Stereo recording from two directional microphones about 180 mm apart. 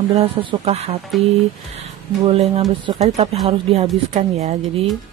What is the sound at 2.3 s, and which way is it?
Speech, 35° right (ahead or behind).